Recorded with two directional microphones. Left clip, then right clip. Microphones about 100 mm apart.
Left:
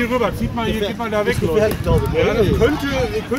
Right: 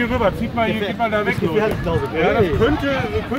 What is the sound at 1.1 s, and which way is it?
Speech, 25° right (ahead or behind).